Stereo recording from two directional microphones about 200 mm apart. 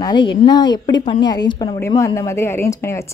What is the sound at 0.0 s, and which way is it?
A woman's voice, 20° left (ahead or behind).